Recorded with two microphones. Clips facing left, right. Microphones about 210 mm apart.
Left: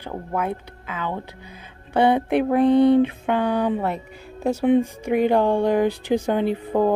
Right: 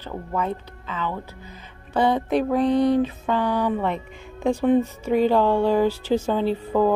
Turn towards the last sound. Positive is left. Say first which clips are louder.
# even
turn(degrees=15)  # may be behind; listen again after turning